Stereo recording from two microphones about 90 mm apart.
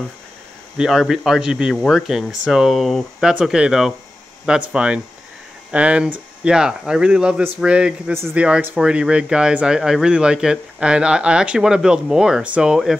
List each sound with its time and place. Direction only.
0.7 s speech: 5° right (ahead or behind)
8.1 s speech: 30° right (ahead or behind)
8.4 s speech: 15° right (ahead or behind)